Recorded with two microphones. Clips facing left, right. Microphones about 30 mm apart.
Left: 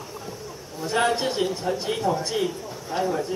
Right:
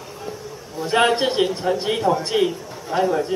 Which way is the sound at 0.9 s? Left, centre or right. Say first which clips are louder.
Right 5 dB; right.